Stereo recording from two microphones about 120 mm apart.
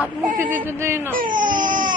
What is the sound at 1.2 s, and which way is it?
Baby cry, 90° right.